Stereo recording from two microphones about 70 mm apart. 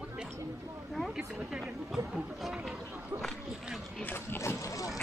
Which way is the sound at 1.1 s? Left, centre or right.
Centre.